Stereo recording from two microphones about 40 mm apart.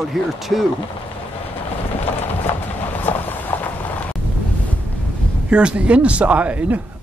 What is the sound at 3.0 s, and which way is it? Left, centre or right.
Clip-clop, left.